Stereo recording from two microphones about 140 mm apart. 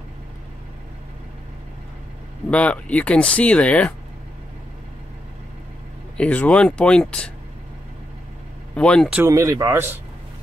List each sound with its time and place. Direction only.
2.5 s speech: 10° left (ahead or behind)
6.1 s speech: 10° left (ahead or behind)
8.7 s speech: 5° left (ahead or behind)
9.1 s speech: 20° right (ahead or behind)